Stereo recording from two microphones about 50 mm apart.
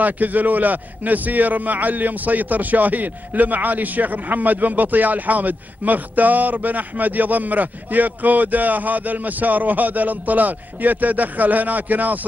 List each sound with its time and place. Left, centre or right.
0.0 s a man's voice: right